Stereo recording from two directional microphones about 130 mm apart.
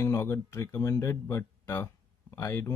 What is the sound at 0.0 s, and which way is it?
Speech, 20° left (ahead or behind).